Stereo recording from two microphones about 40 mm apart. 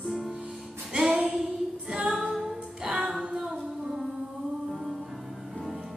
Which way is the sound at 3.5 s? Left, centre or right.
Centre.